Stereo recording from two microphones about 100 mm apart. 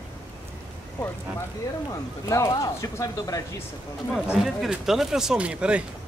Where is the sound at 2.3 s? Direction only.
35° left (ahead or behind).